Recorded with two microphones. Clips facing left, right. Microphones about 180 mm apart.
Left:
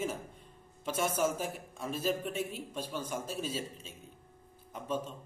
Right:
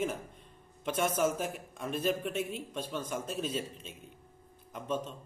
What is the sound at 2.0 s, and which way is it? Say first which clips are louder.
Speech: right 1 dB; 55° right (ahead or behind).